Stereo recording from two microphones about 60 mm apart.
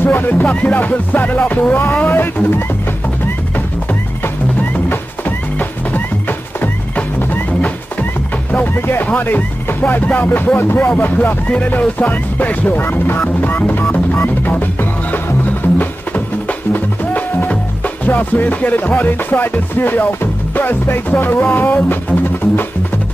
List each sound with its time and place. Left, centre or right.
0.0 s speech: left
1.7 s music: left
4.2 s music: left
8.5 s speech: left
10.0 s music: left
11.0 s speech: left
13.4 s music: left